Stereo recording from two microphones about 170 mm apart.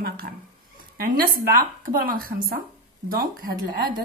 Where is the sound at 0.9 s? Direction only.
55° right (ahead or behind).